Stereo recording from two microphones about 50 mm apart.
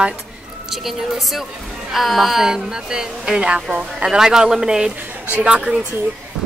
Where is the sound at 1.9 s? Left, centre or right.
Centre.